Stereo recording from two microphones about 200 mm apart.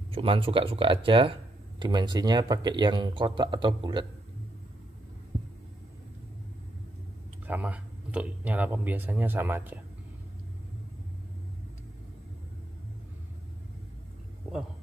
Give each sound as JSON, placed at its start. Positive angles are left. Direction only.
{"t": 0.1, "sound": "speech", "side_deg": -25}
{"t": 7.4, "sound": "speech", "side_deg": -5}